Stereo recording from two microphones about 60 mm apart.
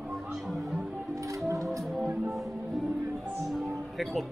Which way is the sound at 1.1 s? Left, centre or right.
Right.